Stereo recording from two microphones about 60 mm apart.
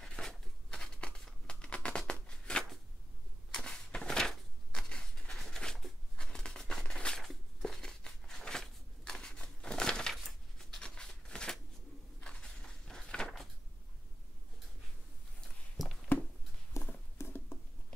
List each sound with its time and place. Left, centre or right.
0.0 s a sound: centre
9.4 s crumpling: centre
10.1 s coin: centre
10.8 s a sound: centre
16.8 s horse: left
17.2 s patter: left